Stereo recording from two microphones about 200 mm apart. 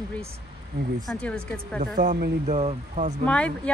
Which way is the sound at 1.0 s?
5° left (ahead or behind).